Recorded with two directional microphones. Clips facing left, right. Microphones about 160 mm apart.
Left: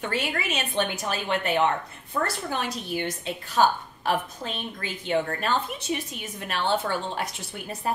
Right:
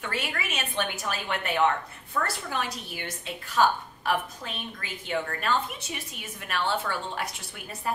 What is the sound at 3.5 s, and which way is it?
A woman's voice, 25° left (ahead or behind).